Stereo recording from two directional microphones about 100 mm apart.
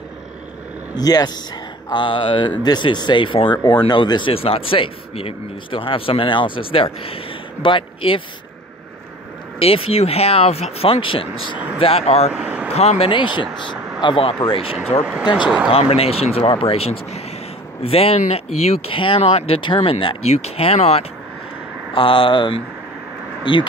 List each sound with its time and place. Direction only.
0.9 s speech: 40° left (ahead or behind)
1.9 s speech: 55° left (ahead or behind)
3.5 s speech: 45° left (ahead or behind); by 8.2 s 60° left (ahead or behind)
9.6 s speech: 75° left (ahead or behind)
11.5 s speech: 15° right (ahead or behind)
11.8 s speech: 80° left
12.4 s vehicle: 15° right (ahead or behind)
12.7 s speech: 90° left
13.1 s speech: 55° left (ahead or behind)
14.0 s speech: 65° left (ahead or behind)
15.2 s speech: 50° left (ahead or behind)
15.7 s speech: 80° left
21.9 s speech: 60° left (ahead or behind)